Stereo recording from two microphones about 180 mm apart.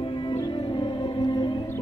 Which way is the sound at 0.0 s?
30° left (ahead or behind).